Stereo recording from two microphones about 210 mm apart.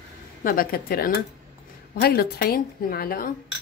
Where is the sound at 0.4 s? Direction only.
45° left (ahead or behind).